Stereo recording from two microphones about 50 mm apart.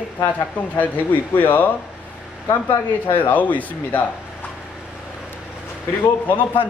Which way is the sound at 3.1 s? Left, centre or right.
Left.